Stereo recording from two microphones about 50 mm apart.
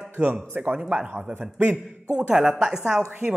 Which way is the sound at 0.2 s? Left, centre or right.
Right.